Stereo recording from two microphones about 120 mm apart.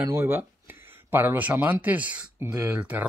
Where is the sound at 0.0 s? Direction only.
15° right (ahead or behind).